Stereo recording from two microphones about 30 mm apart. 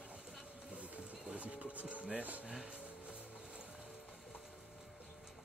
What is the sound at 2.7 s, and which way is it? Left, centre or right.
Music, right.